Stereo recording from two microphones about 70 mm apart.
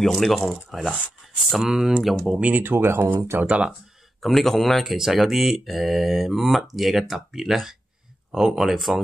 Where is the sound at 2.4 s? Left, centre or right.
Right.